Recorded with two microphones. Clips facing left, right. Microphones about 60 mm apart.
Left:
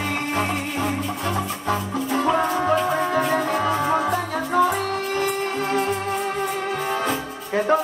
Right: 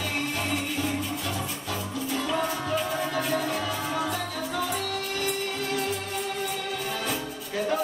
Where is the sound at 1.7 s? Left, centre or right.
Left.